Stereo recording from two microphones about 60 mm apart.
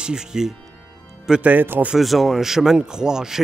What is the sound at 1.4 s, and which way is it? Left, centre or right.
Speech, right.